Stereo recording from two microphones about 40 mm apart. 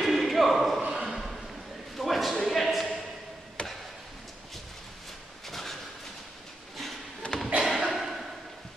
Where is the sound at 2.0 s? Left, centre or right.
Centre.